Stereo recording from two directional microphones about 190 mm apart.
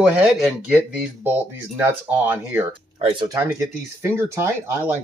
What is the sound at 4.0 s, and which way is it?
Speech, 15° right (ahead or behind).